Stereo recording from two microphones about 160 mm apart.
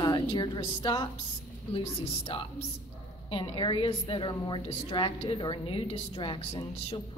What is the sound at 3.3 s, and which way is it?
A woman's voice, 30° left (ahead or behind).